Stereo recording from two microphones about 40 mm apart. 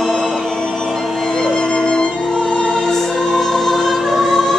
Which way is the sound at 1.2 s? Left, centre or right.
Centre.